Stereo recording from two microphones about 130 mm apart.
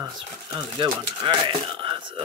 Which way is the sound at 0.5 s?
40° right (ahead or behind).